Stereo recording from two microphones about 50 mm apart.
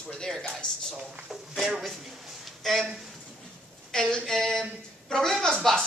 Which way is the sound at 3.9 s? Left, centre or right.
Centre.